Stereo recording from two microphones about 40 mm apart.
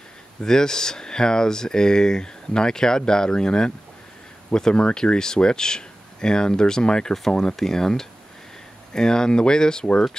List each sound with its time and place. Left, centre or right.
0.4 s speech: centre